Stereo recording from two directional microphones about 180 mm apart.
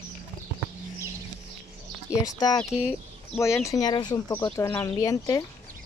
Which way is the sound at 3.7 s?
20° left (ahead or behind).